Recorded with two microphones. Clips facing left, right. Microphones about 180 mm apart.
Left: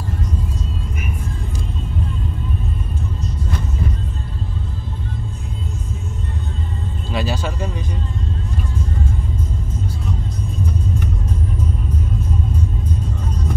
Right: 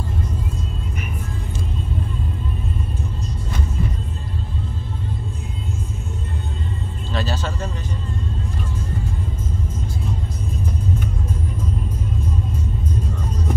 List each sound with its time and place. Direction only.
7.1 s music: 10° left (ahead or behind)